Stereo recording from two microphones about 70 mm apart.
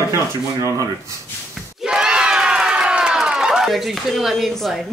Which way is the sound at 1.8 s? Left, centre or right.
Centre.